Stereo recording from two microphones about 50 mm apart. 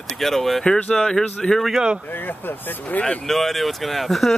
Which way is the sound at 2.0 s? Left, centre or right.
Left.